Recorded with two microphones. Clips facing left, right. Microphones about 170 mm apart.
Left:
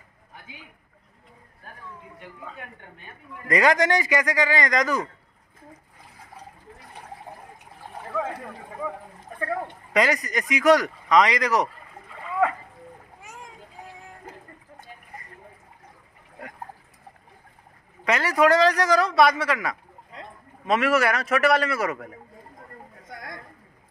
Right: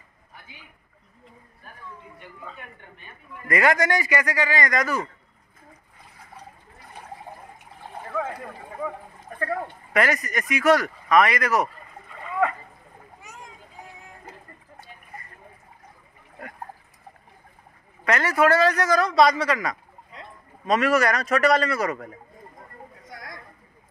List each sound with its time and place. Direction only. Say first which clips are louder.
3.4 s a man's voice: left 1 dB; 20° left (ahead or behind)
9.9 s a man's voice: left 1 dB; 15° left (ahead or behind)
18.0 s a man's voice: even; 15° left (ahead or behind)